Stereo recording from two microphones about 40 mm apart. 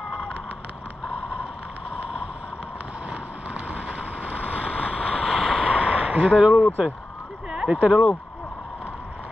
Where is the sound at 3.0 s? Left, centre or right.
Right.